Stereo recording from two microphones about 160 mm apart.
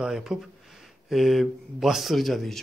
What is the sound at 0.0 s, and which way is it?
Speech, 5° right (ahead or behind).